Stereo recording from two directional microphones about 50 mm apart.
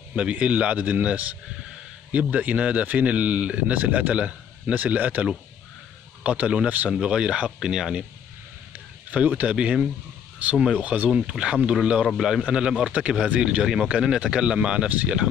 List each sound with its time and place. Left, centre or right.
0.1 s speech: right
6.2 s speech: right
6.9 s speech: centre
8.7 s a man's voice: right